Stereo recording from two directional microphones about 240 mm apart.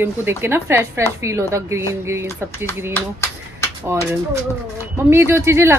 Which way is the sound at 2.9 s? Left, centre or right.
Centre.